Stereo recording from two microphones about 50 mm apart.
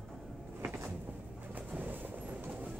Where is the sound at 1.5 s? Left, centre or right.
Right.